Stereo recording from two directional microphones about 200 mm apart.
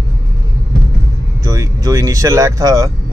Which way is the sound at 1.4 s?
15° right (ahead or behind).